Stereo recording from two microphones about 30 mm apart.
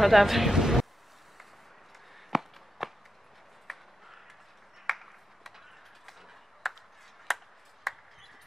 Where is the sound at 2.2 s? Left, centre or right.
Centre.